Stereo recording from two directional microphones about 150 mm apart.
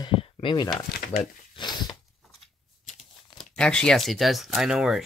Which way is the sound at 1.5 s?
30° left (ahead or behind).